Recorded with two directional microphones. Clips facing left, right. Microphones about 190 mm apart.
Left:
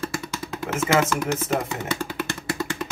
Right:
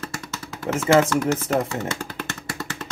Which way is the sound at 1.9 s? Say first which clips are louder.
Left 3 dB; 10° left (ahead or behind).